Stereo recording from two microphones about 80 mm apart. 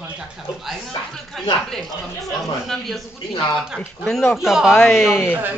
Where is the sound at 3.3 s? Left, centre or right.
Left.